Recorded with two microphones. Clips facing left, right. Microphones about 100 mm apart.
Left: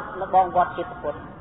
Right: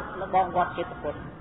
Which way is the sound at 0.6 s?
40° left (ahead or behind).